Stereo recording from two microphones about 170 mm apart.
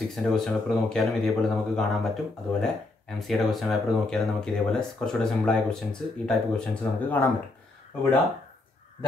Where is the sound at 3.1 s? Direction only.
Centre (ahead or behind).